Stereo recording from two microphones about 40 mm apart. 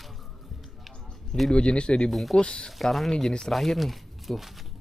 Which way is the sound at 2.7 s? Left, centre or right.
Centre.